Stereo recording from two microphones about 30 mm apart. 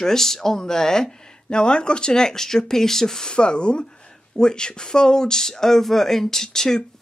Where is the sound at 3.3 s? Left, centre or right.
Left.